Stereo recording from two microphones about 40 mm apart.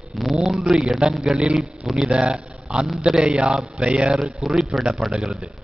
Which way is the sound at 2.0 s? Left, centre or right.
Right.